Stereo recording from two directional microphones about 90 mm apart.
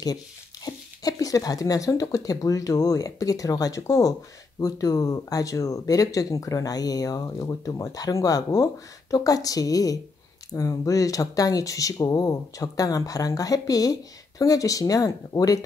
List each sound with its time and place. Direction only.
0.7 s speech: 40° left (ahead or behind)